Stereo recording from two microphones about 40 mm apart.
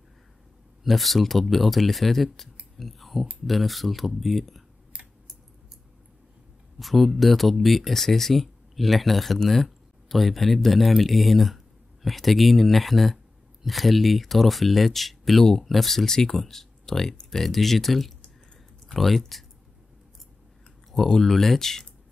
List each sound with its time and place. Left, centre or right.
0.8 s speech: centre
2.8 s scissors: centre
3.4 s speech: centre
4.9 s scissors: right
6.8 s speech: centre
20.9 s speech: centre